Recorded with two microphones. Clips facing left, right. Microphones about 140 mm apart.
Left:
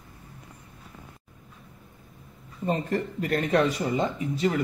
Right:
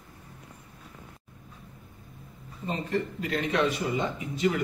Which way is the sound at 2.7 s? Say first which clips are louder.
Left 3 dB; 45° left (ahead or behind).